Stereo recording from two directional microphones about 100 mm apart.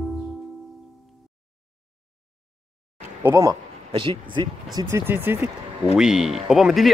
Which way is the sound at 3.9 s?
60° right (ahead or behind).